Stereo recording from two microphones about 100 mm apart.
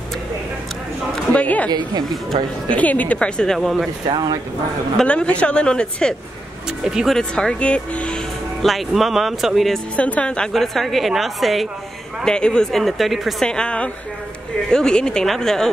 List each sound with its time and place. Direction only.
1.3 s a sound: 15° left (ahead or behind)
1.7 s a woman's voice: 45° right (ahead or behind)
2.7 s speech: 15° left (ahead or behind); by 3.9 s centre (ahead or behind)
4.9 s speech: 10° left (ahead or behind)
6.8 s speech: 5° right (ahead or behind)
7.2 s speech: 10° left (ahead or behind)
8.6 s a woman's voice: centre (ahead or behind)
9.9 s a woman's voice: 15° left (ahead or behind)